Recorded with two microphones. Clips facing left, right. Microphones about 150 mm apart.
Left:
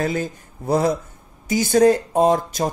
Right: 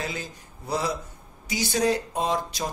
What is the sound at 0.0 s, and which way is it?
Speech, 50° left (ahead or behind).